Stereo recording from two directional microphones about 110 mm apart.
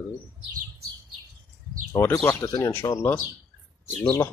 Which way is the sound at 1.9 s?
20° left (ahead or behind).